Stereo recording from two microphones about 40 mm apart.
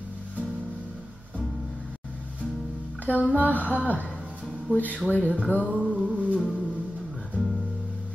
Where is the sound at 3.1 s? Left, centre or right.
Left.